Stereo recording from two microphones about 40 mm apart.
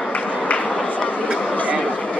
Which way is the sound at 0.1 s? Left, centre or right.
Left.